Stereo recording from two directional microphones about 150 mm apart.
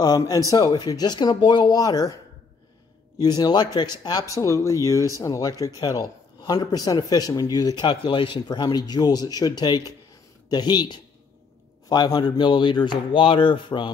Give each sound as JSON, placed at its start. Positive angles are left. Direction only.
{"t": 0.0, "sound": "speech", "side_deg": 25}
{"t": 3.2, "sound": "speech", "side_deg": 25}